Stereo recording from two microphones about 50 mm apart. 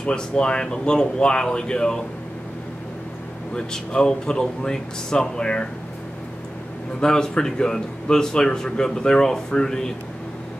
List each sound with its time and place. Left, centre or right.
0.0 s a man's voice: centre
3.5 s a man's voice: centre
7.0 s a man's voice: centre